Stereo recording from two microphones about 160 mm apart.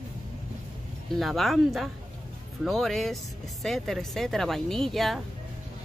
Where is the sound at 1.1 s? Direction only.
Centre (ahead or behind).